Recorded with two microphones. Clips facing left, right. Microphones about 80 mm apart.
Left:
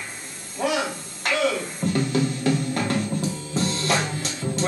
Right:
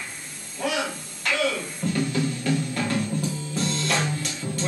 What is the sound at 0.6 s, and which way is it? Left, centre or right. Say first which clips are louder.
Music: left 3 dB; centre.